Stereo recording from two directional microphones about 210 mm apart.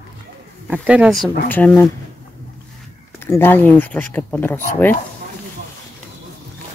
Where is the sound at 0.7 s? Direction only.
5° right (ahead or behind); by 1.9 s 10° left (ahead or behind).